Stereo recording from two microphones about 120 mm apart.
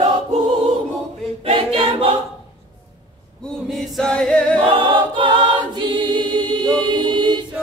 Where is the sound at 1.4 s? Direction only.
55° right (ahead or behind).